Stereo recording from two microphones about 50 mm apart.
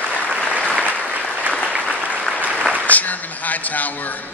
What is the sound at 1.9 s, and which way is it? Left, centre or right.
Applause, right.